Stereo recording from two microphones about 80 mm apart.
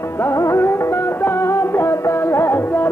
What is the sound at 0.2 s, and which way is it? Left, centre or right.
Music, left.